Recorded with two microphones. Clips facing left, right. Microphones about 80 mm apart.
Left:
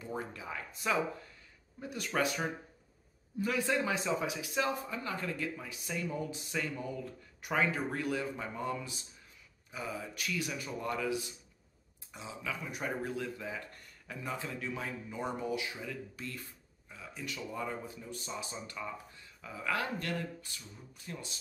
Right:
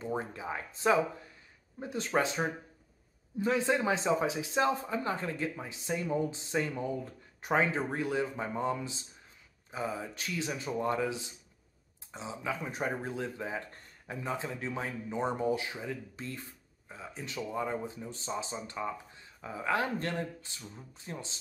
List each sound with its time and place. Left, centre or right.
0.0 s speech: right